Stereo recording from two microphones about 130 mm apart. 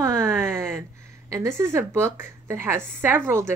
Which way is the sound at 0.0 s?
20° right (ahead or behind).